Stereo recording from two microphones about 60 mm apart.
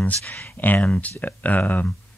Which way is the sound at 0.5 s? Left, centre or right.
Left.